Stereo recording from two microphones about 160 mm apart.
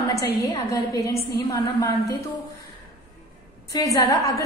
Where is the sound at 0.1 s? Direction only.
20° left (ahead or behind).